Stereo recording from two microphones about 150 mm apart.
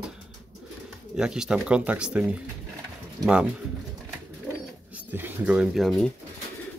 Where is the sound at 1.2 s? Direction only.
5° right (ahead or behind).